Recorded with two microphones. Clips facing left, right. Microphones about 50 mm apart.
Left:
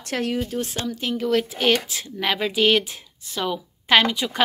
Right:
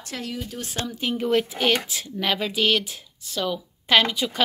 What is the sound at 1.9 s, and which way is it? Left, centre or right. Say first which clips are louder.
A woman's voice: left 1 dB; centre.